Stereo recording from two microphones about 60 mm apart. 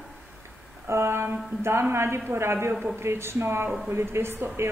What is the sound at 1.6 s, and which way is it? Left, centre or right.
Speech, right.